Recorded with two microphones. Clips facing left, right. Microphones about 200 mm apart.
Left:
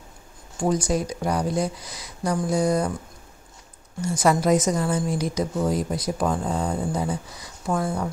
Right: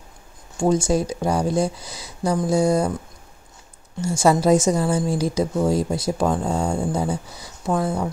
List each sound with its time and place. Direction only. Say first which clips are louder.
0.6 s a woman's voice: right 4 dB; 25° right (ahead or behind)
4.0 s a woman's voice: right 3 dB; 25° right (ahead or behind)